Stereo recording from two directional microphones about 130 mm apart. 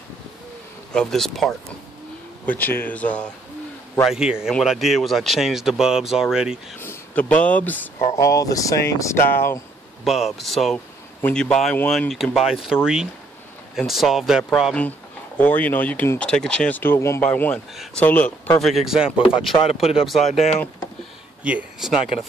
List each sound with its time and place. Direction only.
0.9 s speech: centre (ahead or behind)
2.4 s speech: 15° left (ahead or behind)
4.1 s speech: 5° right (ahead or behind)
6.8 s speech: 15° left (ahead or behind)
8.2 s speech: 25° left (ahead or behind)
10.0 s speech: centre (ahead or behind)
18.6 s speech: centre (ahead or behind)
19.5 s speech: 50° left (ahead or behind)
19.8 s speech: 5° right (ahead or behind)
21.5 s speech: 5° right (ahead or behind)